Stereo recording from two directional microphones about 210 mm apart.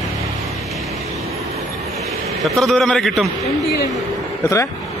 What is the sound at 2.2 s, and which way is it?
Speech, centre (ahead or behind).